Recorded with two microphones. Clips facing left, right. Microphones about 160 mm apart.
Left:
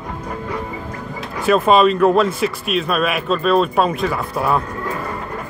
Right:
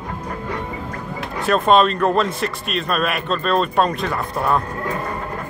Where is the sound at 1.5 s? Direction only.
5° left (ahead or behind).